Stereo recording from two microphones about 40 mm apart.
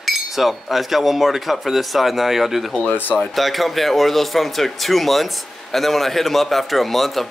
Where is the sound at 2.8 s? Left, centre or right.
Left.